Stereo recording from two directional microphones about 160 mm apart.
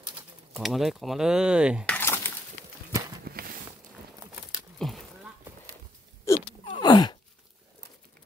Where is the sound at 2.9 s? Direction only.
20° right (ahead or behind).